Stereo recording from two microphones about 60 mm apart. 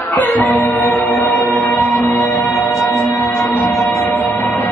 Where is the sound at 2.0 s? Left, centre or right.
Left.